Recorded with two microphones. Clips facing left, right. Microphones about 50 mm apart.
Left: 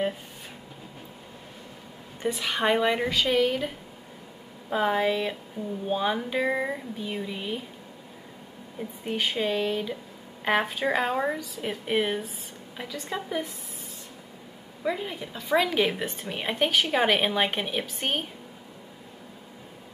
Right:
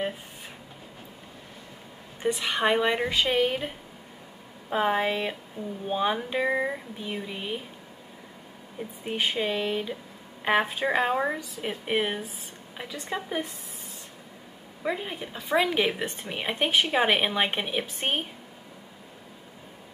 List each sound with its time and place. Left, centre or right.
2.3 s a woman's voice: centre
3.1 s a woman's voice: right
9.0 s a woman's voice: centre
14.8 s a woman's voice: centre